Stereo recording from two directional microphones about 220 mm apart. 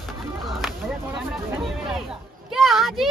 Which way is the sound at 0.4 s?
Centre (ahead or behind).